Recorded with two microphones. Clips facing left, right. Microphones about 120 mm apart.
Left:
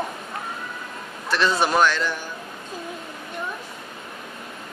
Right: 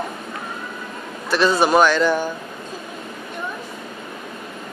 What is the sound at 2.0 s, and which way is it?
Speech, 55° right (ahead or behind).